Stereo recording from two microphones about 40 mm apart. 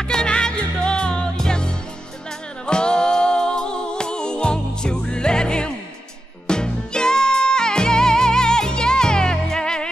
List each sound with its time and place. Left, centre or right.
0.1 s music: left